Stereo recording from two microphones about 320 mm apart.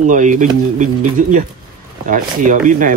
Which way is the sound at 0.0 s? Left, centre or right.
Right.